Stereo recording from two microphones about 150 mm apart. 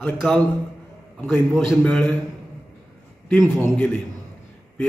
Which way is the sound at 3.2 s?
15° left (ahead or behind).